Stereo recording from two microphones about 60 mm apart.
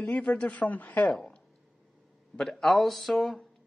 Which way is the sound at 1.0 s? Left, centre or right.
Centre.